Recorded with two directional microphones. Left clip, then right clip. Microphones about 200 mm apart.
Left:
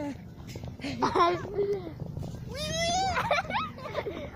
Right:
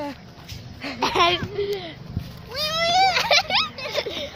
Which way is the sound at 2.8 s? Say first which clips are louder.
Right 10 dB; 45° left (ahead or behind).